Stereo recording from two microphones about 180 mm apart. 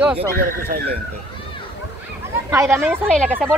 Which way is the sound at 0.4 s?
55° right (ahead or behind).